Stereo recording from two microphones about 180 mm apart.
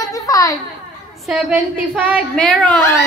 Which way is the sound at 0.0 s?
20° left (ahead or behind).